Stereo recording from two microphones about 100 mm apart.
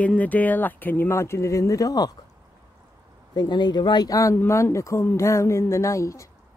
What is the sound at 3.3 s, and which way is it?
Speech, 45° left (ahead or behind).